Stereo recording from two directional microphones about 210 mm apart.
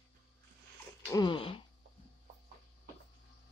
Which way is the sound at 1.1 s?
20° left (ahead or behind).